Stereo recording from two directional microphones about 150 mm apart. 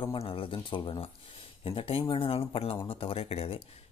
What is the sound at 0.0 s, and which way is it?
Speech, 35° left (ahead or behind).